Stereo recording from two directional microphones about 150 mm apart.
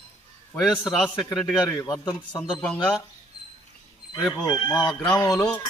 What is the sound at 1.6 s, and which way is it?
Speech, 20° left (ahead or behind).